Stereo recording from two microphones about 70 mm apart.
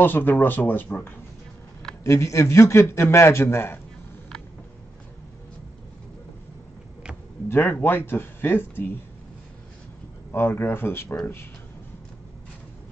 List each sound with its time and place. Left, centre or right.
0.0 s speech: left
2.0 s a man's voice: left
7.4 s a man's voice: left
10.3 s a man's voice: left